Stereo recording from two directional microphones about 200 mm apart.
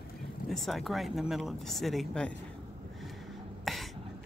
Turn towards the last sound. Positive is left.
turn(degrees=0)  # may be behind; listen again after turning